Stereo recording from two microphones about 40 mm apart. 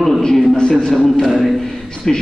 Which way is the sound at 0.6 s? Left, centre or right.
Centre.